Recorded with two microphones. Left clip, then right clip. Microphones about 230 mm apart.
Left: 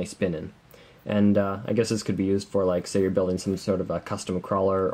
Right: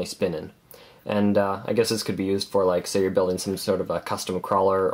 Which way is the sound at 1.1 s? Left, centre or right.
Right.